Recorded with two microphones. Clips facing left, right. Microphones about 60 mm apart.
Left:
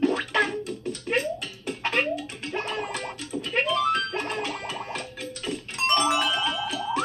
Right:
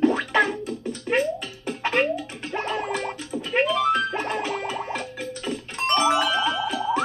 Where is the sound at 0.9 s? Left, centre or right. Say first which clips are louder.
Right 4 dB; centre.